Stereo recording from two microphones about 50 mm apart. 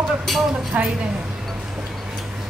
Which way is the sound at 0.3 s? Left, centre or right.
Centre.